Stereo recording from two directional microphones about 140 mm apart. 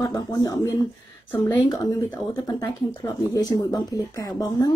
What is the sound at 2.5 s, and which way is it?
A woman's voice, 30° left (ahead or behind).